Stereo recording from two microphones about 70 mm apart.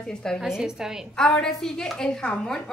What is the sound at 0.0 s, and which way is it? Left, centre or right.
Speech, centre.